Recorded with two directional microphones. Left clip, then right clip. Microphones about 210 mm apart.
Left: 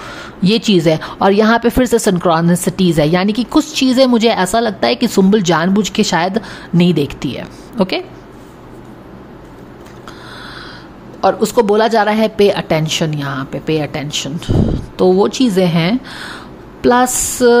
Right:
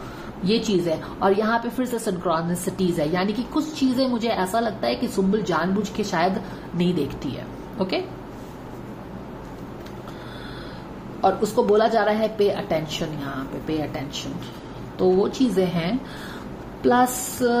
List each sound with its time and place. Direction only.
0.4 s a woman's voice: 45° left (ahead or behind)
11.1 s speech: 50° left (ahead or behind)